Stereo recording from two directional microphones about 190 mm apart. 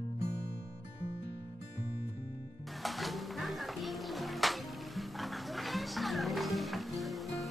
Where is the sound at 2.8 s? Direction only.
Centre (ahead or behind).